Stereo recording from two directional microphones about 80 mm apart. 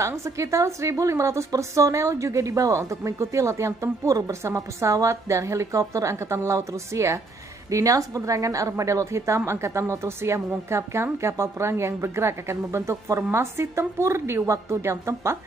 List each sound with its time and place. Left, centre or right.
0.0 s a woman's voice: right